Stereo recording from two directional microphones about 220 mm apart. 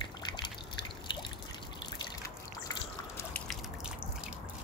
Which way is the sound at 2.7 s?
15° left (ahead or behind).